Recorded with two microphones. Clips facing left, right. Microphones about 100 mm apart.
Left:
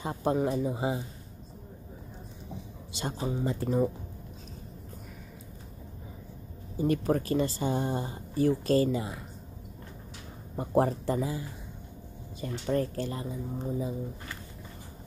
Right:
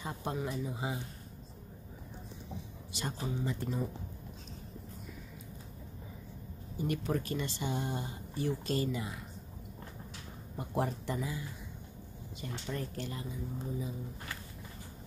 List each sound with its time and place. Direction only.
0.0 s speech: 30° left (ahead or behind)
0.4 s speech: 50° left (ahead or behind)
3.0 s speech: 25° left (ahead or behind)
3.3 s speech: 45° left (ahead or behind)
6.8 s speech: 40° left (ahead or behind)
10.6 s speech: 40° left (ahead or behind)